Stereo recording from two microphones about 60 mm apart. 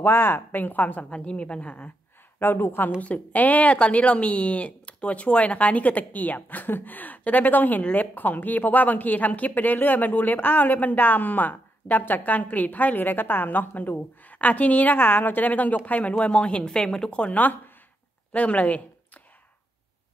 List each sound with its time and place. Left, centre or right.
0.0 s a woman's voice: left
2.3 s a woman's voice: left
3.0 s speech: left